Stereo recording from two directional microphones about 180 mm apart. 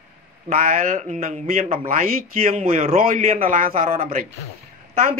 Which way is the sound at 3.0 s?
50° right (ahead or behind).